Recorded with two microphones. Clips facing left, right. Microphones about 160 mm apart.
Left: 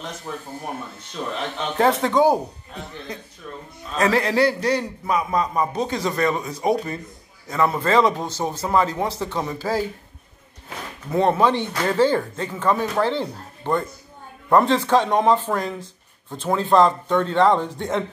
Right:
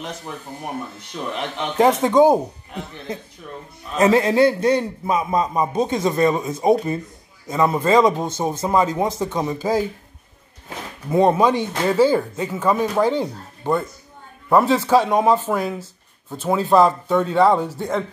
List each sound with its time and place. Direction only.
1.1 s a man's voice: 15° right (ahead or behind)
11.1 s speech: 15° right (ahead or behind)